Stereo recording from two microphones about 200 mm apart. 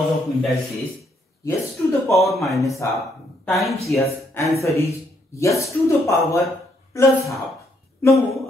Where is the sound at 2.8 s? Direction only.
10° left (ahead or behind).